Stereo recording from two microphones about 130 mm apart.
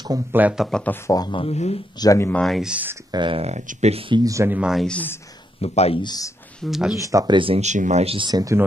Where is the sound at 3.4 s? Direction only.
55° right (ahead or behind).